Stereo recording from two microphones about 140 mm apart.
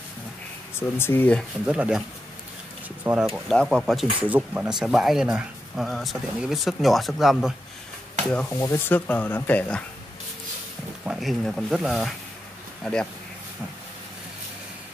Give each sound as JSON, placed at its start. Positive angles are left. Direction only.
{"t": 0.7, "sound": "speech", "side_deg": 15}
{"t": 1.7, "sound": "speech", "side_deg": -5}
{"t": 3.0, "sound": "a sound", "side_deg": -10}
{"t": 3.4, "sound": "speech", "side_deg": 0}
{"t": 8.5, "sound": "speech", "side_deg": 15}
{"t": 11.1, "sound": "speech", "side_deg": 0}